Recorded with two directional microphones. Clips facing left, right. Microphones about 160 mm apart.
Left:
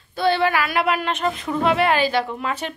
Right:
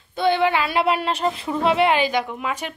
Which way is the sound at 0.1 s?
20° right (ahead or behind).